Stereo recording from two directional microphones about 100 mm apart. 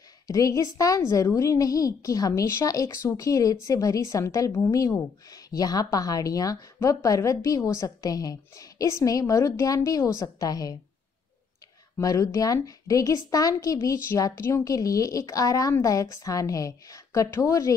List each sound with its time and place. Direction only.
0.3 s a woman's voice: 35° left (ahead or behind)
12.0 s a woman's voice: 35° left (ahead or behind)